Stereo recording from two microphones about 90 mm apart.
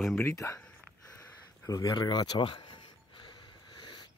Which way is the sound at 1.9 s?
55° left (ahead or behind).